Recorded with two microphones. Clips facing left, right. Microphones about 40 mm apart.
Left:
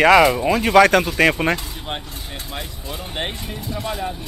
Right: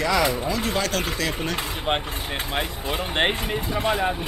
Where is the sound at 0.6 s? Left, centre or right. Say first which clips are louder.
Left 17 dB; left.